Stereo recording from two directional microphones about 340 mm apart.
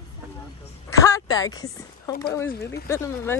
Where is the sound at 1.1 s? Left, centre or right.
Centre.